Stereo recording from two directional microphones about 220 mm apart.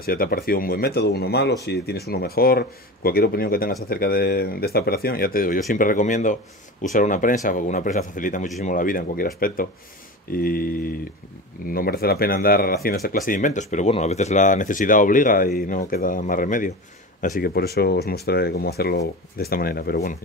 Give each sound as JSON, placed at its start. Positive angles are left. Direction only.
{"t": 0.0, "sound": "speech", "side_deg": 40}
{"t": 11.7, "sound": "speech", "side_deg": 45}